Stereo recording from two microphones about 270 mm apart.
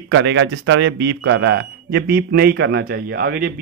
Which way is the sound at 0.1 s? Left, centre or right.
Right.